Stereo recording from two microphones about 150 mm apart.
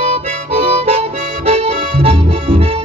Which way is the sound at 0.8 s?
45° right (ahead or behind).